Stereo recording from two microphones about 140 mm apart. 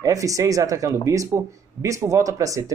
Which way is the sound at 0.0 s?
25° right (ahead or behind).